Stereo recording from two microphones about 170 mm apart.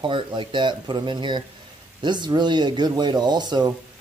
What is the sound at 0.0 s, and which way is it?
Speech, 30° right (ahead or behind).